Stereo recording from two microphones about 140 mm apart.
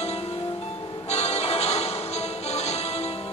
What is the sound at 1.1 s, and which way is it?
Change ringing, 50° left (ahead or behind).